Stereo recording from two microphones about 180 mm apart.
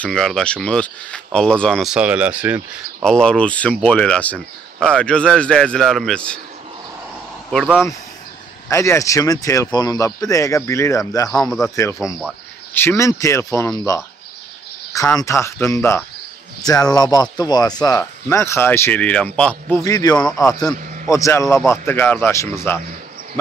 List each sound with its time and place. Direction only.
0.0 s speech: 5° left (ahead or behind)
3.0 s speech: 5° left (ahead or behind)
7.5 s speech: 5° right (ahead or behind)
8.6 s speech: 15° left (ahead or behind)
11.3 s speech: 5° left (ahead or behind)
11.7 s speech: 15° left (ahead or behind)
19.8 s speech: 20° left (ahead or behind)